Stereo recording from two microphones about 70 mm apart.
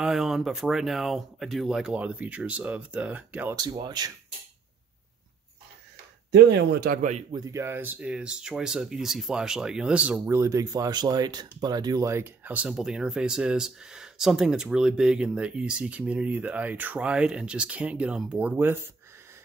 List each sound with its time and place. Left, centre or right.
0.0 s speech: centre
2.0 s speech: centre
3.5 s speech: right
7.5 s speech: right
8.0 s speech: centre
10.1 s speech: right
10.4 s speech: right
10.7 s speech: right
12.6 s speech: centre